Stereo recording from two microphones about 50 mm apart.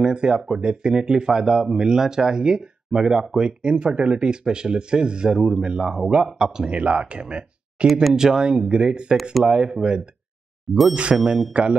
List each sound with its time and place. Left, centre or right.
0.0 s speech: centre
6.7 s speech: right
7.8 s speech: centre